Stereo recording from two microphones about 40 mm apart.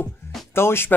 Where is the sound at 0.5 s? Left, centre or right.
Left.